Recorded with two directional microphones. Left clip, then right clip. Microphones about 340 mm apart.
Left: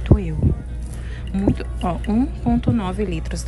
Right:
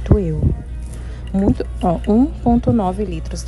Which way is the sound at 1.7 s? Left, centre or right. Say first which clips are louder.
Right 6 dB; left.